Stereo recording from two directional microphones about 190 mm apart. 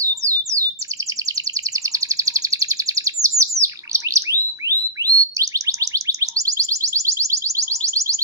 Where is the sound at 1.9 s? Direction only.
15° right (ahead or behind).